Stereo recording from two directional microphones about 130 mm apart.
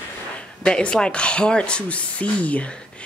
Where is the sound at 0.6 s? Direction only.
5° left (ahead or behind).